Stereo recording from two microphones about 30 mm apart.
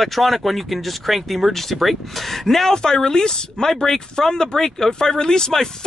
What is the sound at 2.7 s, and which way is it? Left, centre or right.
Speech, left.